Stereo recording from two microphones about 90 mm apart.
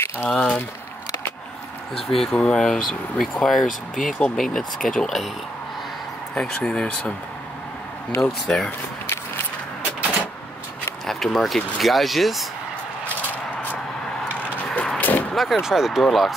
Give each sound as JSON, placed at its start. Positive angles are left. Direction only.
{"t": 0.2, "sound": "speech", "side_deg": 10}
{"t": 2.0, "sound": "speech", "side_deg": 0}
{"t": 6.3, "sound": "speech", "side_deg": 10}
{"t": 8.2, "sound": "speech", "side_deg": 5}
{"t": 8.6, "sound": "a sound", "side_deg": 25}
{"t": 11.1, "sound": "speech", "side_deg": 5}
{"t": 14.7, "sound": "a sound", "side_deg": 5}
{"t": 15.0, "sound": "a sound", "side_deg": 20}
{"t": 15.3, "sound": "speech", "side_deg": 0}